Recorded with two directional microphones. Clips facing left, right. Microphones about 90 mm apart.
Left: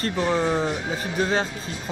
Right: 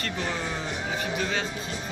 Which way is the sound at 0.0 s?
35° left (ahead or behind).